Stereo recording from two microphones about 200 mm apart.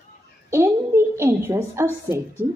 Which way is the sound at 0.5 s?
15° right (ahead or behind).